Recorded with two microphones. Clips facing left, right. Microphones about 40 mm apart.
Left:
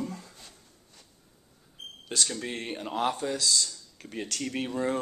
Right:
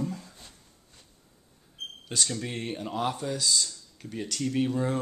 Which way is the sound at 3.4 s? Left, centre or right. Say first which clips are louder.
Even; centre.